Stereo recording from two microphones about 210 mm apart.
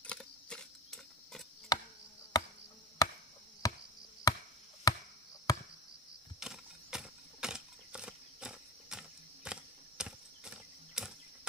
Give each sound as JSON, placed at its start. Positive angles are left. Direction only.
{"t": 0.0, "sound": "mechanisms", "side_deg": 5}
{"t": 1.7, "sound": "chop", "side_deg": 20}
{"t": 2.3, "sound": "insect", "side_deg": 20}
{"t": 3.0, "sound": "chop", "side_deg": 15}
{"t": 4.3, "sound": "a sound", "side_deg": 20}
{"t": 4.9, "sound": "chop", "side_deg": 15}
{"t": 6.4, "sound": "keys jangling", "side_deg": -5}